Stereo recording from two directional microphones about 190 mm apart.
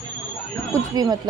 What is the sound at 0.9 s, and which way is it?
Speech, 20° right (ahead or behind).